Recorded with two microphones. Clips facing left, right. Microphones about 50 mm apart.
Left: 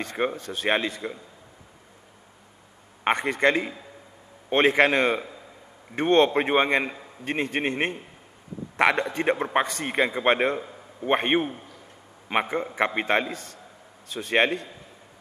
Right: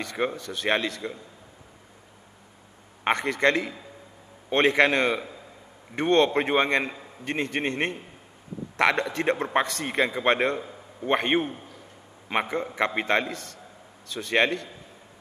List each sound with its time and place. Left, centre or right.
0.0 s a man's voice: left
3.0 s a man's voice: centre
10.6 s a sound: centre
11.1 s a man's voice: centre